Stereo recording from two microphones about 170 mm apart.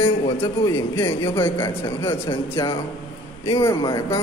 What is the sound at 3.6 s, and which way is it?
Speech, 20° left (ahead or behind).